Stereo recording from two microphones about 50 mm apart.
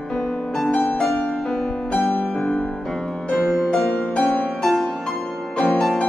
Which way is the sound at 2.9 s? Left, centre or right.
Centre.